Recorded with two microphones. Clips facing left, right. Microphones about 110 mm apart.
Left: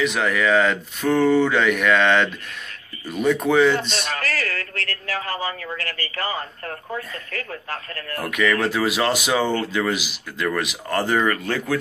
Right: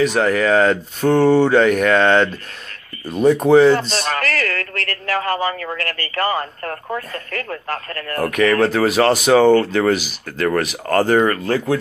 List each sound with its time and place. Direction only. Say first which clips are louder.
0.0 s speech: right 5 dB; 35° right (ahead or behind)
4.1 s speech: right 6 dB; 70° right (ahead or behind); by 11.8 s 35° right (ahead or behind)